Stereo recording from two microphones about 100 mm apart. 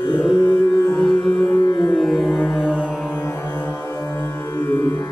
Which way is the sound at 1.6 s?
50° left (ahead or behind).